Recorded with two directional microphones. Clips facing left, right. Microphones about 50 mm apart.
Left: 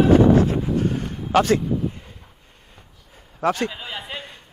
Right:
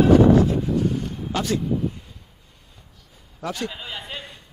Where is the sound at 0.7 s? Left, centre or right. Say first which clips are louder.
Even; left.